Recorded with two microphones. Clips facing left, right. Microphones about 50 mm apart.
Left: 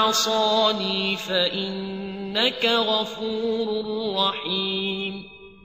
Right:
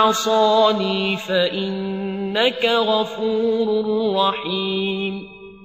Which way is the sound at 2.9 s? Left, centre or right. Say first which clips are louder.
Right 6 dB; centre.